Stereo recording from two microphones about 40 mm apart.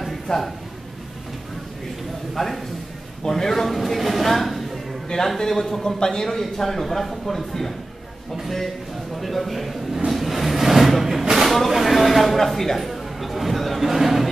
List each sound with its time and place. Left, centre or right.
0.3 s a man's voice: centre
2.3 s a man's voice: centre
9.2 s a sound: centre